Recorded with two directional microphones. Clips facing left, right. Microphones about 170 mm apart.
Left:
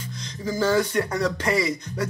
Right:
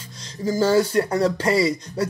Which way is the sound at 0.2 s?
35° right (ahead or behind).